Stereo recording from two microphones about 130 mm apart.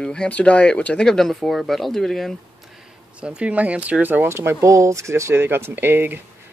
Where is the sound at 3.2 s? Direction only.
10° right (ahead or behind).